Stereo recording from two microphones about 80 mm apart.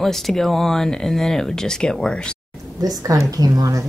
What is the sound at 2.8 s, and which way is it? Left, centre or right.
A woman's voice, right.